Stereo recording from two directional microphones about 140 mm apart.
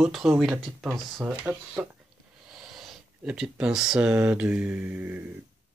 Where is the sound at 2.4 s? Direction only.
Centre (ahead or behind).